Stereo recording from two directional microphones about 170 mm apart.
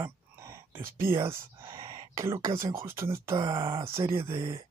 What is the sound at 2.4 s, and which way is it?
Speech, 15° right (ahead or behind).